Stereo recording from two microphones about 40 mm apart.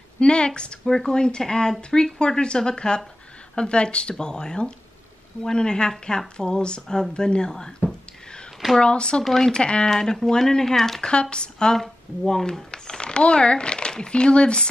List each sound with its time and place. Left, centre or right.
0.2 s speech: left
8.8 s speech: left
9.2 s speech: centre
9.5 s speech: left
9.8 s speech: centre
11.1 s speech: left